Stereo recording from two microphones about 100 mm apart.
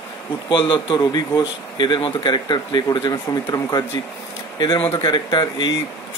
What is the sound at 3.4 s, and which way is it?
Speech, 35° left (ahead or behind).